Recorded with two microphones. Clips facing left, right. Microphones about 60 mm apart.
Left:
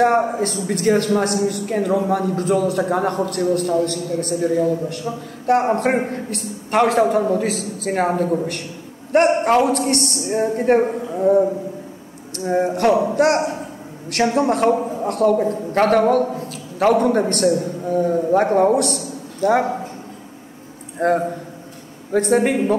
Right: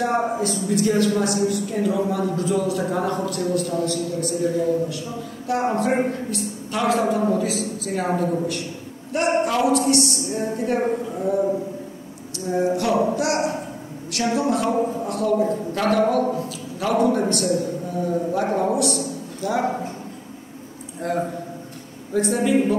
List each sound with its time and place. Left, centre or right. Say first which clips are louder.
0.0 s speech: left 5 dB; left
12.4 s a man's voice: left 3 dB; left
21.0 s speech: left 6 dB; left